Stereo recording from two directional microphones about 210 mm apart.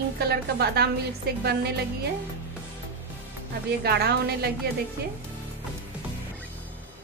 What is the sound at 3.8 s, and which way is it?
Speech, 50° right (ahead or behind).